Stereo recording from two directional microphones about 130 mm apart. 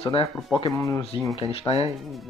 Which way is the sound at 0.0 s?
50° left (ahead or behind).